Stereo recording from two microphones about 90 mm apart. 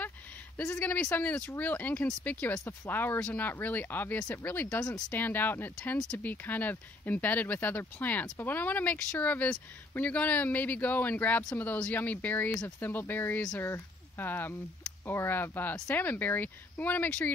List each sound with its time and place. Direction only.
0.6 s speech: 25° left (ahead or behind)